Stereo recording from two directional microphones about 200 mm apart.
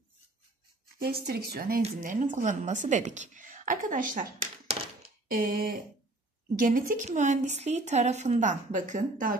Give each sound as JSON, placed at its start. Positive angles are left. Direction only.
{"t": 0.9, "sound": "speech", "side_deg": -50}
{"t": 1.8, "sound": "a woman's voice", "side_deg": -35}